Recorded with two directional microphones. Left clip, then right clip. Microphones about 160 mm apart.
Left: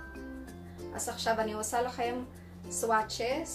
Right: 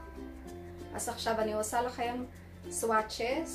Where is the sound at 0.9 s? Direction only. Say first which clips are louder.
Left 2 dB; 5° right (ahead or behind).